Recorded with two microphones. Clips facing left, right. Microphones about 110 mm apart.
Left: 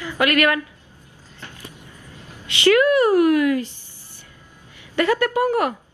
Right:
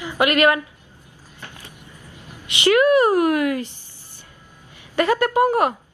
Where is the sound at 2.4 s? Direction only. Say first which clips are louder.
Left 1 dB; 20° right (ahead or behind).